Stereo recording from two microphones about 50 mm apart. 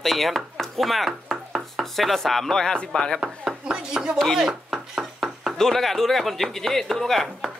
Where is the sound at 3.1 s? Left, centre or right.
Centre.